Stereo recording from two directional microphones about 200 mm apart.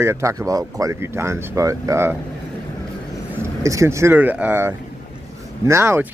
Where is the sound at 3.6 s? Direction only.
15° right (ahead or behind).